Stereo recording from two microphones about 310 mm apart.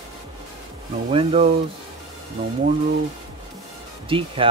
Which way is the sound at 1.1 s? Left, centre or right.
Centre.